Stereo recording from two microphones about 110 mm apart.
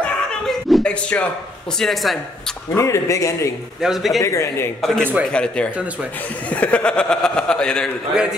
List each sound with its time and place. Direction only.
0.0 s a sound: 5° left (ahead or behind)
1.1 s speech: 20° left (ahead or behind)
1.8 s a man's voice: centre (ahead or behind)
2.7 s speech: 25° left (ahead or behind)
3.8 s a man's voice: 5° right (ahead or behind)
4.2 s speech: 30° left (ahead or behind)
4.8 s a man's voice: 5° left (ahead or behind)